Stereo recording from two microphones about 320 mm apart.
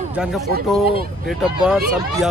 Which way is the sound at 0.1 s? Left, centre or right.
Centre.